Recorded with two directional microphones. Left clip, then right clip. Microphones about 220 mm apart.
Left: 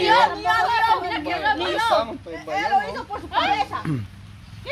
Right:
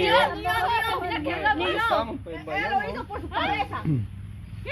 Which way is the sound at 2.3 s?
10° left (ahead or behind).